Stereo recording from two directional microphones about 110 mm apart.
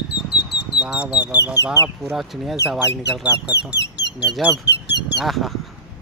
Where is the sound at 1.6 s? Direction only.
35° right (ahead or behind).